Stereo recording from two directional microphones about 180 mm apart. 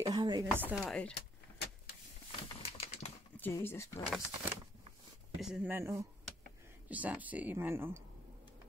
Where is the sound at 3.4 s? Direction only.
15° left (ahead or behind).